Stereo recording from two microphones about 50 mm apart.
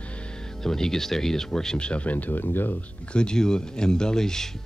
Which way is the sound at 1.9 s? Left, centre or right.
Left.